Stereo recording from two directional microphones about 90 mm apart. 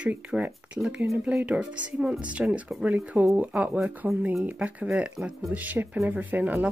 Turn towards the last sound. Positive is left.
turn(degrees=-20)  # may be behind; listen again after turning